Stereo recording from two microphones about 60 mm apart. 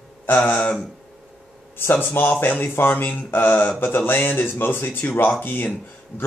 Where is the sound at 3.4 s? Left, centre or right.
Centre.